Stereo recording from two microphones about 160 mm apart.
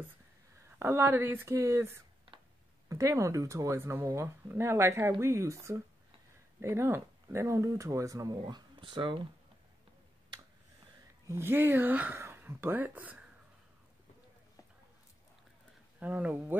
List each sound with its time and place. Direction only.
0.7 s speech: 15° right (ahead or behind)
2.3 s a sound: 30° right (ahead or behind)
2.9 s speech: 20° right (ahead or behind)
11.2 s speech: 15° right (ahead or behind)
16.0 s speech: 10° right (ahead or behind)